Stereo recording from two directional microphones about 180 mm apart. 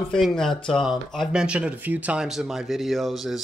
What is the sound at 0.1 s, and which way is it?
Speech, centre (ahead or behind).